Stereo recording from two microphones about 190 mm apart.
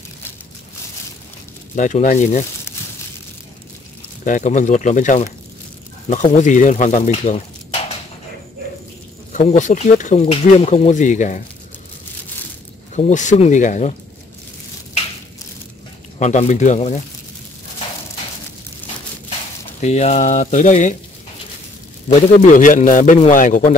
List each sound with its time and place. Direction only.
1.8 s speech: 40° left (ahead or behind)
4.2 s speech: 40° left (ahead or behind)
9.3 s speech: 35° left (ahead or behind)
12.9 s speech: 40° left (ahead or behind)
16.2 s speech: 40° left (ahead or behind)
19.8 s speech: 35° left (ahead or behind)
22.6 s speech: 40° left (ahead or behind)